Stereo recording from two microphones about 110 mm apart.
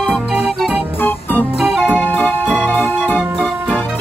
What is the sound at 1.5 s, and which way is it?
Music, centre (ahead or behind).